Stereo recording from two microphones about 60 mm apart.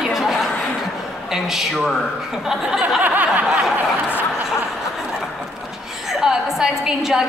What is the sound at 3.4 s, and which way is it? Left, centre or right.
Speech, centre.